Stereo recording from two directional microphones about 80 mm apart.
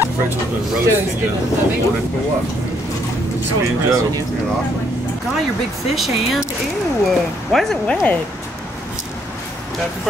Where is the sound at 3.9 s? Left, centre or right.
Right.